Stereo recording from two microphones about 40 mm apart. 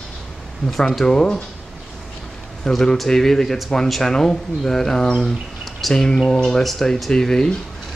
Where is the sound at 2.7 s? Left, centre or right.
Centre.